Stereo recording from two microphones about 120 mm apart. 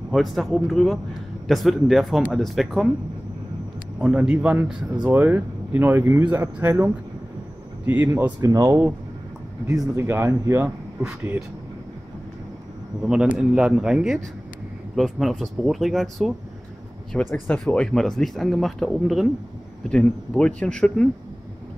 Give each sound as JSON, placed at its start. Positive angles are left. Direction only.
{"t": 0.1, "sound": "speech", "side_deg": 0}
{"t": 4.0, "sound": "speech", "side_deg": -10}
{"t": 9.9, "sound": "speech", "side_deg": -25}
{"t": 11.1, "sound": "speech", "side_deg": -10}
{"t": 13.0, "sound": "speech", "side_deg": -5}